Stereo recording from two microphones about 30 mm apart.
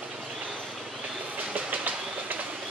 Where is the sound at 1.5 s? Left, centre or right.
Right.